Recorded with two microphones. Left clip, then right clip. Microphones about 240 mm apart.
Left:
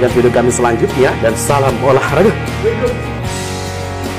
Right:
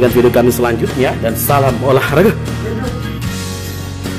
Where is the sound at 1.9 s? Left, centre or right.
Centre.